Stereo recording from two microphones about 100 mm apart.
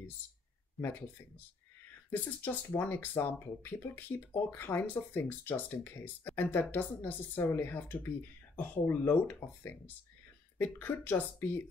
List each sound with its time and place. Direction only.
2.0 s speech: 20° left (ahead or behind)